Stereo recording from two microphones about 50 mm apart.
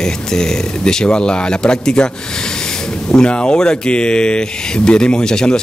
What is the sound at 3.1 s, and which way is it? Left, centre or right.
Speech, left.